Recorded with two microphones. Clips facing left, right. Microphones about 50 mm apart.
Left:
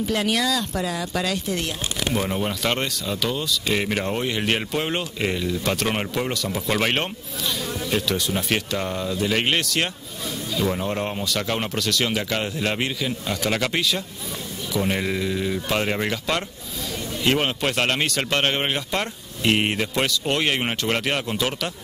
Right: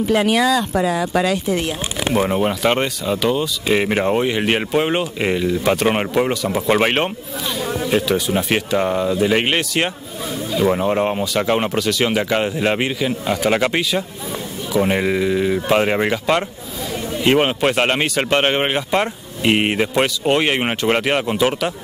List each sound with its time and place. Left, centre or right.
0.0 s speech: centre